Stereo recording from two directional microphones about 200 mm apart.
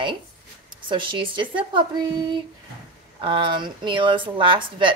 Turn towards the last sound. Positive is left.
turn(degrees=-25)  # may be behind; listen again after turning